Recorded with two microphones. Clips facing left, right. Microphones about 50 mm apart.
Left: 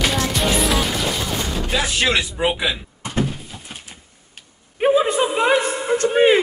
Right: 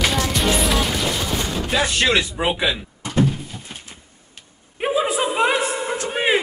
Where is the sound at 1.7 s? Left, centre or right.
Centre.